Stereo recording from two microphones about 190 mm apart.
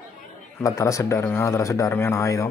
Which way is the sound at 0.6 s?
15° left (ahead or behind).